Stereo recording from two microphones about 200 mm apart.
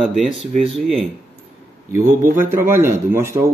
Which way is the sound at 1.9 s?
15° right (ahead or behind).